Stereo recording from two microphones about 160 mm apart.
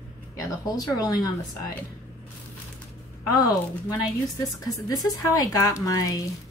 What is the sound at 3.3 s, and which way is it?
Speech, 20° left (ahead or behind).